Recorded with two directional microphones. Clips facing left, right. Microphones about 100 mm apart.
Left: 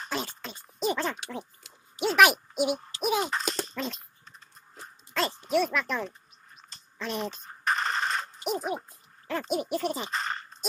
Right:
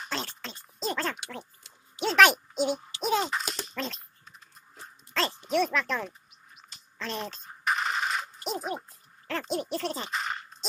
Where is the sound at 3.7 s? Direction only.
5° left (ahead or behind).